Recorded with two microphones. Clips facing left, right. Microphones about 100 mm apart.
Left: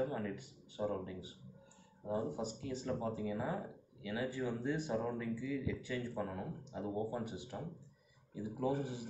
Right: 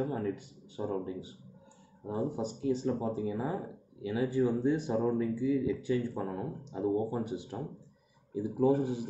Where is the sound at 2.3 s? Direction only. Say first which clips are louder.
Right 9 dB; 25° right (ahead or behind).